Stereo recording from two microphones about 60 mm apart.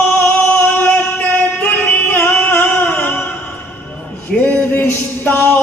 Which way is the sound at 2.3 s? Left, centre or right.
Left.